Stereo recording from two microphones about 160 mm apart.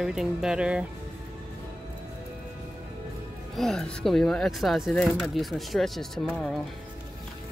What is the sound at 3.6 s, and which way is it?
Speech, 5° left (ahead or behind).